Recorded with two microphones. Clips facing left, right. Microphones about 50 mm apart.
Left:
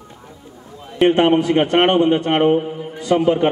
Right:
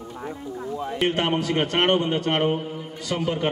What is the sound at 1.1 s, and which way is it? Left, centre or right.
A man's voice, left.